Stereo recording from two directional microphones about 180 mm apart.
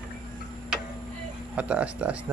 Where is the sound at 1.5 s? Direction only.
5° right (ahead or behind).